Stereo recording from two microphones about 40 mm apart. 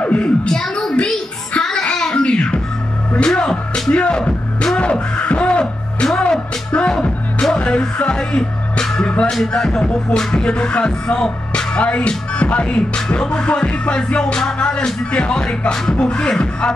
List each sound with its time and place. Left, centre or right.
0.0 s a sound: left
0.5 s a woman's voice: centre
1.7 s a sound: left
3.3 s music: centre
4.7 s speech: left
6.8 s music: left
11.7 s music: left